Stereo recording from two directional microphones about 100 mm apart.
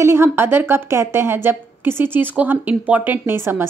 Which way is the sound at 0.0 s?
25° right (ahead or behind).